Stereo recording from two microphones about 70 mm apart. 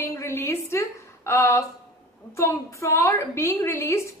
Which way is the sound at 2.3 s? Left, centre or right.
Left.